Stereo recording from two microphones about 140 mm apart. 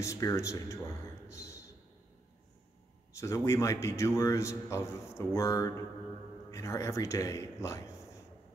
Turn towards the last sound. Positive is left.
turn(degrees=20)  # may be behind; listen again after turning